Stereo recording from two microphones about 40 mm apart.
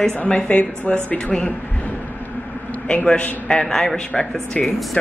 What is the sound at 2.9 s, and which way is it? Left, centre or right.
Speech, left.